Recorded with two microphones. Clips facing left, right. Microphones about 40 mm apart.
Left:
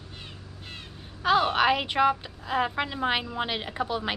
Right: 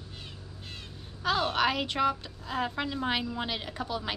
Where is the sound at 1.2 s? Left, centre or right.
Centre.